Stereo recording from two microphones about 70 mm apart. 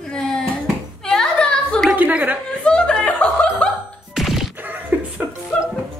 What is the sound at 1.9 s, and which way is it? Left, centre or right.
Speech, right.